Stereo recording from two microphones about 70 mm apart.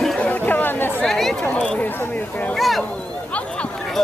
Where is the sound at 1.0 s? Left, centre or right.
Centre.